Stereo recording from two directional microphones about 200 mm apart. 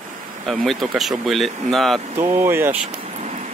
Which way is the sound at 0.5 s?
Centre (ahead or behind).